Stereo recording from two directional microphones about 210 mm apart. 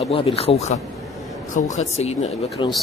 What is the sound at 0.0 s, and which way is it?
Speech, 25° left (ahead or behind).